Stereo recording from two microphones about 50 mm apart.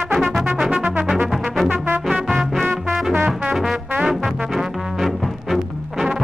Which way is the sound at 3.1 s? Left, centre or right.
Right.